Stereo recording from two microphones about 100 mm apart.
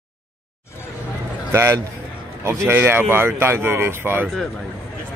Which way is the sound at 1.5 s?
25° right (ahead or behind).